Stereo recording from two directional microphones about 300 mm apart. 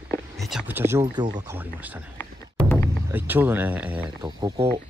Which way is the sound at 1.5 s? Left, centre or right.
Centre.